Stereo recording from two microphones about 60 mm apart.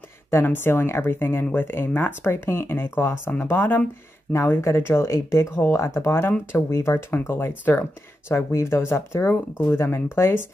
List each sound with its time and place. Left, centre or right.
0.3 s speech: left
4.3 s speech: left
5.0 s speech: left
5.9 s speech: left